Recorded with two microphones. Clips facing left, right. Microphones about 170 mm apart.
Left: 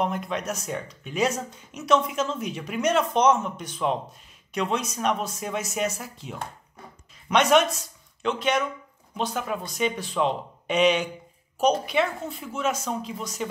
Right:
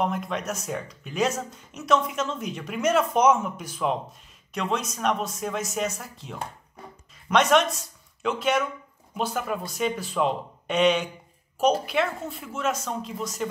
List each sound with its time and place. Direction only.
0.0 s speech: centre (ahead or behind)